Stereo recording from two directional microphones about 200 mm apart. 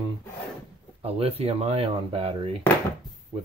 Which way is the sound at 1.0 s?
30° right (ahead or behind).